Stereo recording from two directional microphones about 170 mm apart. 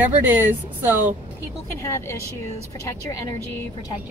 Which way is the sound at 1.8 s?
15° left (ahead or behind).